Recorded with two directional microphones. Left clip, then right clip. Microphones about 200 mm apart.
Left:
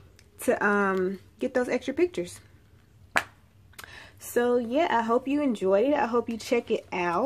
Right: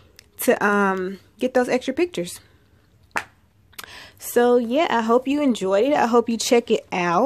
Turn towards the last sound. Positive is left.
turn(degrees=-40)  # may be behind; listen again after turning